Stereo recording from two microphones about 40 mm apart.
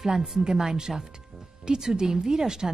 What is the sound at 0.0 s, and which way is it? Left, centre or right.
Speech, centre.